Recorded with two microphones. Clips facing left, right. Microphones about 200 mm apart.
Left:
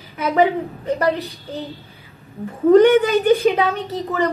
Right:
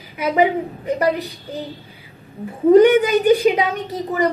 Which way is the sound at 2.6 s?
15° right (ahead or behind).